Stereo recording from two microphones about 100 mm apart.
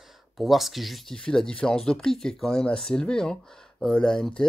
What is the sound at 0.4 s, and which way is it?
Speech, centre (ahead or behind).